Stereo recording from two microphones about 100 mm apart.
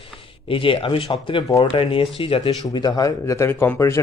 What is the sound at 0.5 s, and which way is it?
Speech, 60° left (ahead or behind).